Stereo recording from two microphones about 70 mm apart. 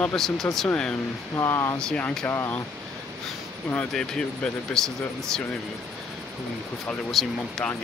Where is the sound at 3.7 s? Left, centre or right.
Centre.